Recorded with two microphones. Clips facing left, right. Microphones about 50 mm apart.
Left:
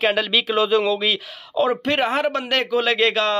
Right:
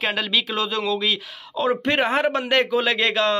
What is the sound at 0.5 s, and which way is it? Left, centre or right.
Speech, centre.